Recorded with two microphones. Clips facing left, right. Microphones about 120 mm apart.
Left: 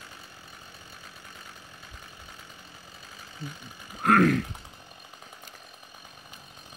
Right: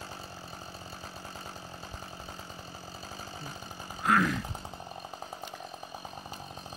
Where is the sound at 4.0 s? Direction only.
60° left (ahead or behind).